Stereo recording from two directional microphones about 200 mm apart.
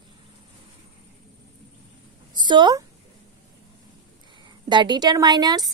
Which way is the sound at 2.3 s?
20° right (ahead or behind).